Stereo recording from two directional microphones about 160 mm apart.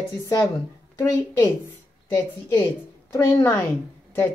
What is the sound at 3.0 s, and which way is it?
Speech, 20° left (ahead or behind).